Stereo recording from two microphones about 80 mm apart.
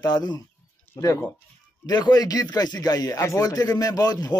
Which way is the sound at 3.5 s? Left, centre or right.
Left.